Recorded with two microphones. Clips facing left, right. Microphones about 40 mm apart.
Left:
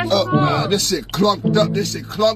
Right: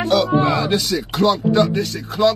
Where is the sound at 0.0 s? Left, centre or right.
Centre.